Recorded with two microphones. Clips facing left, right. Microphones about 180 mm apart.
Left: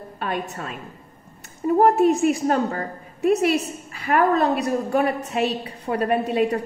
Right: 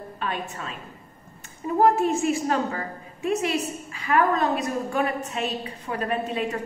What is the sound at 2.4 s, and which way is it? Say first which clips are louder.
Speech: left 4 dB; 40° left (ahead or behind).